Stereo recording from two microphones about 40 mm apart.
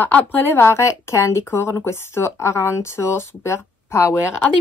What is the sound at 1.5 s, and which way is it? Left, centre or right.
Speech, left.